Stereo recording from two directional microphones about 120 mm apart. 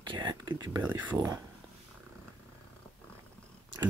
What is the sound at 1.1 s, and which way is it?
Speech, 30° right (ahead or behind).